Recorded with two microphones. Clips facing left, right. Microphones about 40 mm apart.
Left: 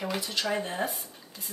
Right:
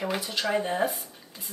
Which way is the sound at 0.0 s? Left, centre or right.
Centre.